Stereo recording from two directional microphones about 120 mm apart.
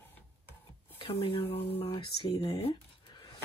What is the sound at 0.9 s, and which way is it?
Speech, 45° left (ahead or behind).